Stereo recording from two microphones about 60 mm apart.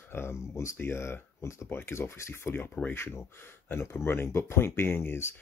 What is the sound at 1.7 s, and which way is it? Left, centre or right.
Speech, left.